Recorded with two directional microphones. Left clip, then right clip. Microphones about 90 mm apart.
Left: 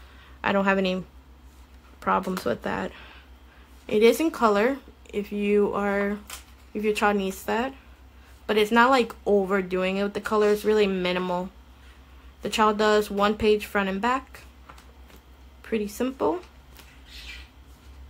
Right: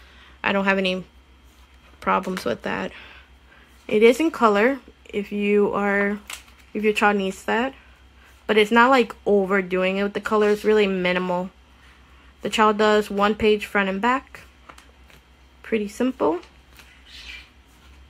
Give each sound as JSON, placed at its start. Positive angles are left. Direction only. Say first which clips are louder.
{"t": 0.4, "sound": "speech", "louder": "right 2 dB", "side_deg": 0}
{"t": 2.0, "sound": "speech", "louder": "right 2 dB", "side_deg": -10}
{"t": 12.4, "sound": "speech", "louder": "right 4 dB", "side_deg": -20}
{"t": 15.6, "sound": "speech", "louder": "right 4 dB", "side_deg": -20}